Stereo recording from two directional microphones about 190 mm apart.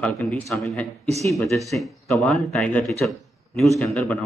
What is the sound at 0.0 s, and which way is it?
A man's voice, 5° left (ahead or behind).